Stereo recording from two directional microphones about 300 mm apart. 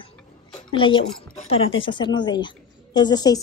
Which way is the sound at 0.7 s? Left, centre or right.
Centre.